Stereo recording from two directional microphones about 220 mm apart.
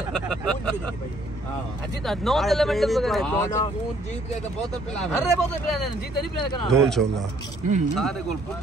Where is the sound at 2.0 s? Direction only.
Centre (ahead or behind).